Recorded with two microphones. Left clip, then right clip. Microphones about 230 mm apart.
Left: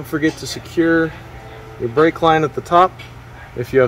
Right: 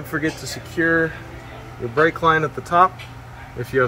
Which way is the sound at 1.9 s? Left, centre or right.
Left.